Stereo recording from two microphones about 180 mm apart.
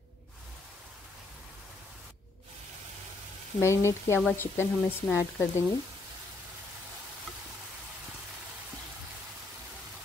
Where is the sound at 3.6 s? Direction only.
15° left (ahead or behind).